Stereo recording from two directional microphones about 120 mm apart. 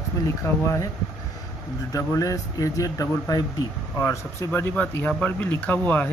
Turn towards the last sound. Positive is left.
turn(degrees=15)  # may be behind; listen again after turning